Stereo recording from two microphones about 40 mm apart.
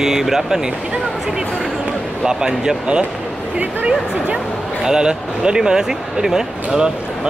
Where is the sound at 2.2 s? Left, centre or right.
Centre.